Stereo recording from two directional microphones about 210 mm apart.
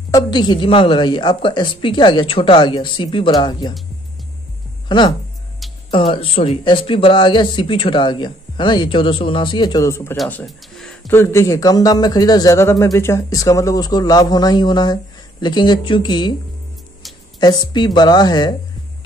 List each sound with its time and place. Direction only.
0.1 s speech: 20° left (ahead or behind)
4.8 s speech: 20° left (ahead or behind)
10.1 s speech: centre (ahead or behind); by 16.3 s 20° left (ahead or behind)
17.4 s speech: 20° left (ahead or behind)